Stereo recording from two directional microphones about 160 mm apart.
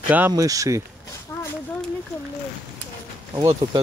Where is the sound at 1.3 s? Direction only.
10° left (ahead or behind).